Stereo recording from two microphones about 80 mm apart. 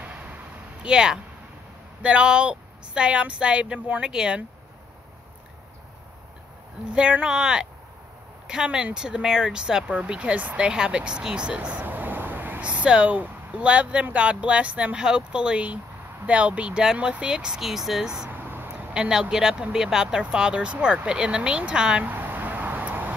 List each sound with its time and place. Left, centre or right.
0.0 s a sound: centre
0.8 s speech: centre
6.9 s speech: centre
18.3 s a sound: right
18.9 s speech: centre
22.1 s vehicle: right